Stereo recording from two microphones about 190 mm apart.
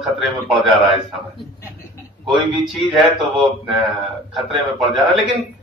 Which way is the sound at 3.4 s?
Centre (ahead or behind).